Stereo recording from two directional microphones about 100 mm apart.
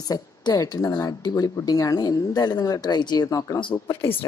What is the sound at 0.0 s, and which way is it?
Speech, 40° left (ahead or behind).